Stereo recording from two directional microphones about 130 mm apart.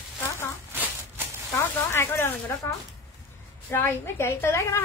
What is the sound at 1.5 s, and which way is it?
A woman's voice, 20° left (ahead or behind).